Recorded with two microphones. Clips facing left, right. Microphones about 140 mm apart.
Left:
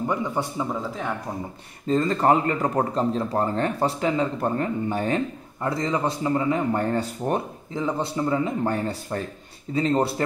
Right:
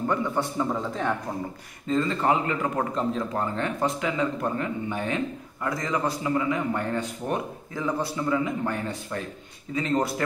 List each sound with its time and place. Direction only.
0.0 s a man's voice: 15° left (ahead or behind)
1.9 s a man's voice: 40° left (ahead or behind)
7.7 s a man's voice: 25° left (ahead or behind)